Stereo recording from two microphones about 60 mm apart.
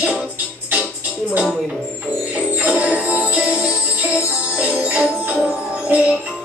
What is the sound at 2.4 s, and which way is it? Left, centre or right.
Music, right.